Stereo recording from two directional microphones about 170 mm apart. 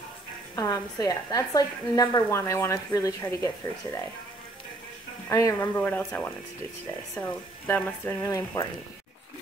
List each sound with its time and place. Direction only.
0.6 s a woman's voice: 20° left (ahead or behind)
5.3 s speech: 15° left (ahead or behind)
8.2 s a woman's voice: 20° left (ahead or behind)